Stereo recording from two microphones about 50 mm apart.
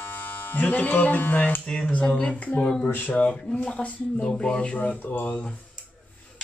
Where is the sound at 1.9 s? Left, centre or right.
Left.